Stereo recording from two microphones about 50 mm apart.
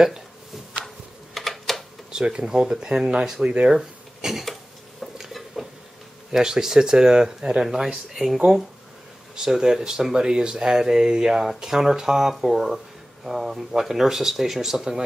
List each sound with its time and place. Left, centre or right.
1.3 s typing: centre
2.0 s speech: centre
3.4 s speech: right
3.7 s speech: centre
5.1 s a sound: centre
6.3 s speech: centre